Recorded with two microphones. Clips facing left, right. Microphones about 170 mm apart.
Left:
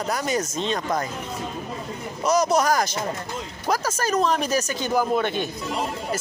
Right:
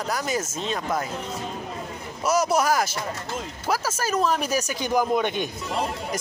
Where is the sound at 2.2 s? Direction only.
5° right (ahead or behind).